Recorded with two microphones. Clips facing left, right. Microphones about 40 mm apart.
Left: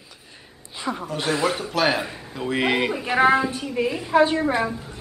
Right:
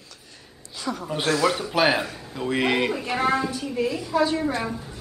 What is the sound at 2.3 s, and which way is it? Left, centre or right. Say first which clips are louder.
A woman's voice: left 1 dB; centre.